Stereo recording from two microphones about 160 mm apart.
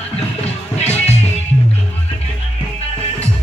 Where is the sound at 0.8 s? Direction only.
40° left (ahead or behind).